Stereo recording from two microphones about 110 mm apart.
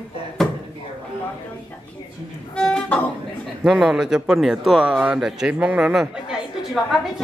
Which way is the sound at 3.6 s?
5° right (ahead or behind).